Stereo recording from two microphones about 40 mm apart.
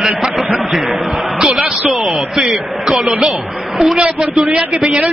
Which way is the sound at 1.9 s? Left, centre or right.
Centre.